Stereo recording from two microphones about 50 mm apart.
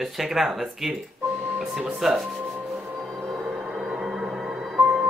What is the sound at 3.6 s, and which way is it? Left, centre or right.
Music, centre.